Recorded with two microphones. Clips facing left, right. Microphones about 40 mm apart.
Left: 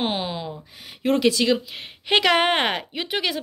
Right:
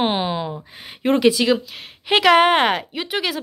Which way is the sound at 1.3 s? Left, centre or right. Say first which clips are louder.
Right 2 dB; centre.